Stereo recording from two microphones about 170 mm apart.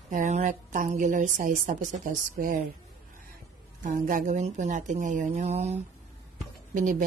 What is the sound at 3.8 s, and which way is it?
Speech, 55° right (ahead or behind).